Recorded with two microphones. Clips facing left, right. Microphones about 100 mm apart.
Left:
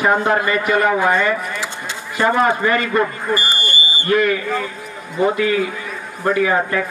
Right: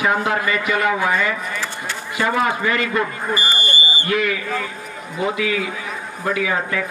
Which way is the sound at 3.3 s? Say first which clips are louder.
Left 2 dB; 20° right (ahead or behind).